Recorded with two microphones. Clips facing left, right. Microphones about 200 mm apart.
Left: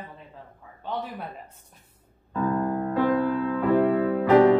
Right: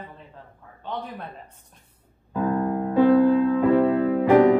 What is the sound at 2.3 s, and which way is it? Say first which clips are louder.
Music: right 2 dB; 15° right (ahead or behind).